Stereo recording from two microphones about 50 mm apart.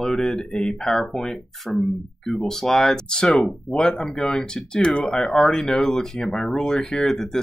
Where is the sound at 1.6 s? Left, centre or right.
Centre.